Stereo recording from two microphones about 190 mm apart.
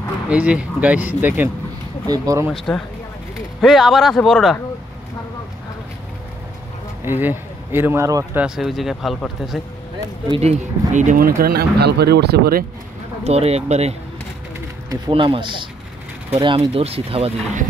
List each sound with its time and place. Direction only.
0.3 s speech: 5° right (ahead or behind)
2.5 s speech: 5° left (ahead or behind)
7.1 s speech: 10° right (ahead or behind)
8.5 s speech: centre (ahead or behind)
10.3 s speech: 35° right (ahead or behind); by 12.6 s 55° right (ahead or behind)
13.2 s speech: 35° right (ahead or behind)